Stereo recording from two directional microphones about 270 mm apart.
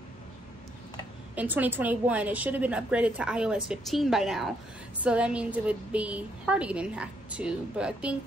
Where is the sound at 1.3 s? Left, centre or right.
Centre.